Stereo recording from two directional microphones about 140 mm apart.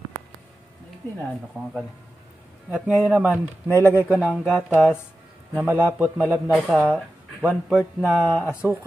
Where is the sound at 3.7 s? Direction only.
20° right (ahead or behind); by 4.6 s centre (ahead or behind).